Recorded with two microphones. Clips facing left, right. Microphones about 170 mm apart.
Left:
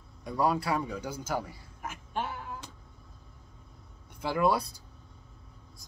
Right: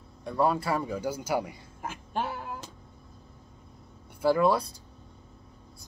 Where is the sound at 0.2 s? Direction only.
Centre (ahead or behind); by 1.6 s 15° right (ahead or behind).